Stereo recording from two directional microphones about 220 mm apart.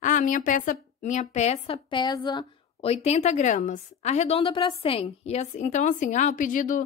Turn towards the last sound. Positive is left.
turn(degrees=35)  # may be behind; listen again after turning